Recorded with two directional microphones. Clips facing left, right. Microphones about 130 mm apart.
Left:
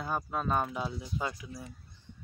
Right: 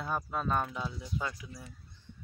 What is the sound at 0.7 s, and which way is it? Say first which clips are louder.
Speech: left 3 dB; 25° left (ahead or behind).